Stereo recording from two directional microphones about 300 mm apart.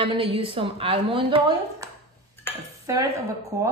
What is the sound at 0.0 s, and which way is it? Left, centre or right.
A woman's voice, centre.